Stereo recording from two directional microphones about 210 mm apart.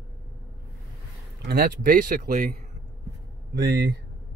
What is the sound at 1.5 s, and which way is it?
Speech, 45° right (ahead or behind).